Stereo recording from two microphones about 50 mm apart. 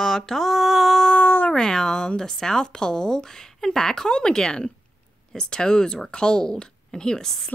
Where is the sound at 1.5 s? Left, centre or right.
Centre.